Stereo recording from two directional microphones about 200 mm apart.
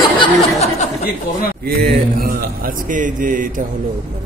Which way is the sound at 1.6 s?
50° right (ahead or behind).